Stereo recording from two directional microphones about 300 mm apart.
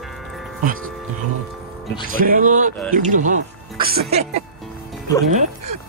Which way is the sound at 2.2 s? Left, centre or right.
Right.